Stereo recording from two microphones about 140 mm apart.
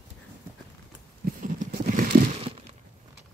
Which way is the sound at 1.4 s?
70° right (ahead or behind).